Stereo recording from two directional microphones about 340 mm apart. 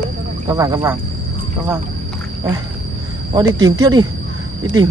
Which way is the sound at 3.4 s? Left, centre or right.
Right.